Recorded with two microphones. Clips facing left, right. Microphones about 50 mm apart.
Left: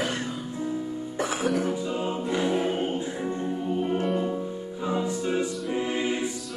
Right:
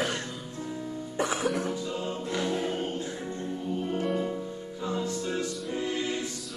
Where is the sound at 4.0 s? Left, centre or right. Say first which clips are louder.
Left 3 dB; centre.